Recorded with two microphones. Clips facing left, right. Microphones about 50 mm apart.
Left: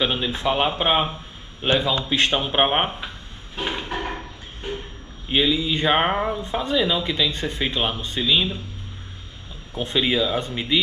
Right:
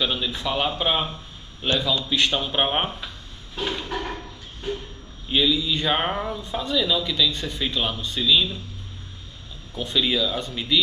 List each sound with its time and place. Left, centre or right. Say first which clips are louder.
0.0 s speech: left 3 dB; left
3.5 s a sound: left 1 dB; left
5.3 s speech: left 1 dB; left
9.8 s speech: left 2 dB; left